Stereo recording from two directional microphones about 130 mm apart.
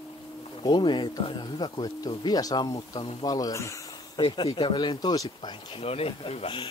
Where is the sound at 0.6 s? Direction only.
40° left (ahead or behind).